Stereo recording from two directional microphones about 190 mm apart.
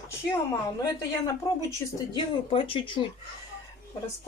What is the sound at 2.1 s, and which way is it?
Speech, 30° left (ahead or behind).